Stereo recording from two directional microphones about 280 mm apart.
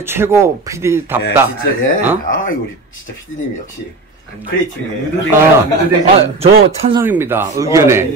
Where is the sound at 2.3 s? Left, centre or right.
Left.